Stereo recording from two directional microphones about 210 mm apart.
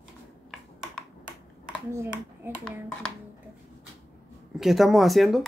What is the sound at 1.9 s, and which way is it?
Speech, 10° right (ahead or behind).